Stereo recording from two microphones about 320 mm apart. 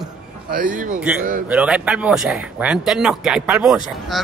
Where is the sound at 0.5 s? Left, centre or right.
Right.